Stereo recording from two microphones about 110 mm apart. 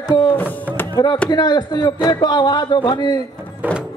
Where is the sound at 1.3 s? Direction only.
40° left (ahead or behind).